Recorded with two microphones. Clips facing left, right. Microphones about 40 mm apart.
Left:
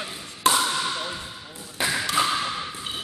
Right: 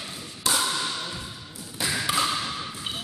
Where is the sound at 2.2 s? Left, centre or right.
Centre.